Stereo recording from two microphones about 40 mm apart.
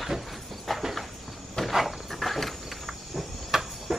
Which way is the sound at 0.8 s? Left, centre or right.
Centre.